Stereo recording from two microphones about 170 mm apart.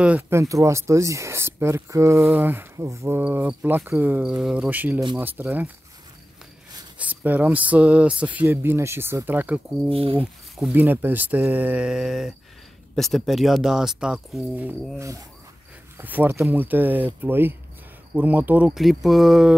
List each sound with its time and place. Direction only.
0.0 s speech: 10° right (ahead or behind)
7.0 s speech: 10° right (ahead or behind)
9.8 s speech: 30° right (ahead or behind)
10.5 s speech: 5° right (ahead or behind)
16.0 s speech: 10° right (ahead or behind)